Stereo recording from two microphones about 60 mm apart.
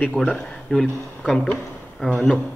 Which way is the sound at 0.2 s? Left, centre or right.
Centre.